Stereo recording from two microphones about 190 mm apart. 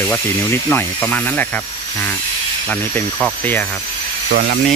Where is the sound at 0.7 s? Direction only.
10° left (ahead or behind).